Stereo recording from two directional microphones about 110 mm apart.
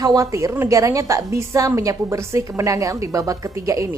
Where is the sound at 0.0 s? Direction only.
30° right (ahead or behind).